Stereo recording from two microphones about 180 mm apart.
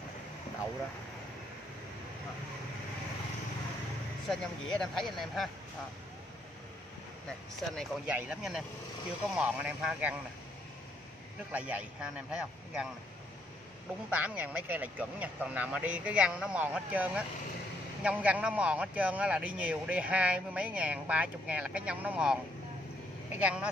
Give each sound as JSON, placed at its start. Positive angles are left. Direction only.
{"t": 4.3, "sound": "speech", "side_deg": 5}
{"t": 7.7, "sound": "speech", "side_deg": 0}
{"t": 11.5, "sound": "speech", "side_deg": -5}
{"t": 14.1, "sound": "speech", "side_deg": -10}